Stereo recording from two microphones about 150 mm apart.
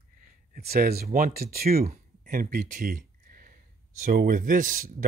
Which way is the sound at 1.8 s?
60° right (ahead or behind).